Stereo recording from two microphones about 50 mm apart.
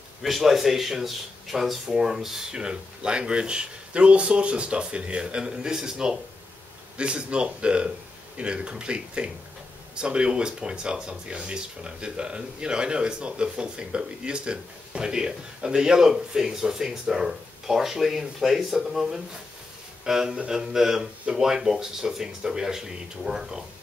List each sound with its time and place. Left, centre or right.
0.2 s speech: centre